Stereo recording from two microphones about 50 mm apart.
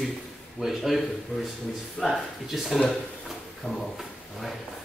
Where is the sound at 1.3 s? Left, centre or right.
Centre.